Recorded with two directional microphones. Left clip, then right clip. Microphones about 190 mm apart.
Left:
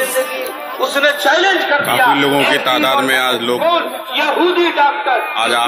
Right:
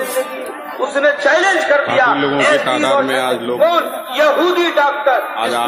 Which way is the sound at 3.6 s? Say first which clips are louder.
Even; 25° right (ahead or behind).